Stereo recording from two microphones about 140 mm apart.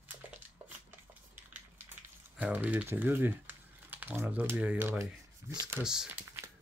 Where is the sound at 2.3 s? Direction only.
10° right (ahead or behind).